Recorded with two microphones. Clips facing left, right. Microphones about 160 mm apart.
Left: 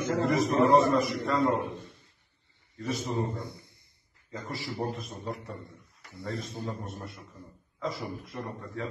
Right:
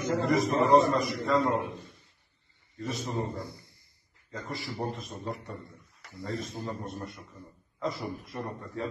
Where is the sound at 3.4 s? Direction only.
20° left (ahead or behind).